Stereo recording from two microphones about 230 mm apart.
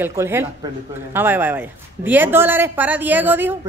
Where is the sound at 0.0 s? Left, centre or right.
Centre.